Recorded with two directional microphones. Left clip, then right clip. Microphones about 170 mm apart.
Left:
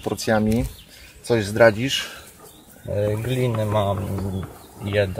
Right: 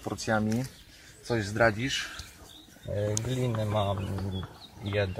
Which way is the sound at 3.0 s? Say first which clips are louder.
Left 8 dB; 20° left (ahead or behind).